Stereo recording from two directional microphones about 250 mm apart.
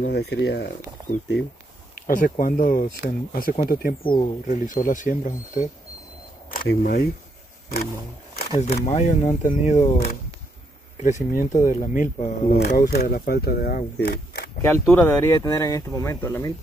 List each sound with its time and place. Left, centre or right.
0.0 s speech: left
8.5 s speech: left
14.6 s speech: centre